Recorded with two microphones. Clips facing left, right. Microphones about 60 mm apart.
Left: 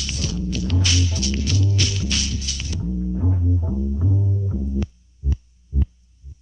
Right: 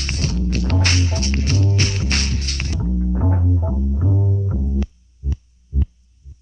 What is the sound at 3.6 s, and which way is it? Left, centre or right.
Music, right.